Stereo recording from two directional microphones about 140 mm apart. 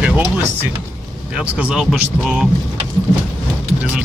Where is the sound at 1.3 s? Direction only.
10° right (ahead or behind).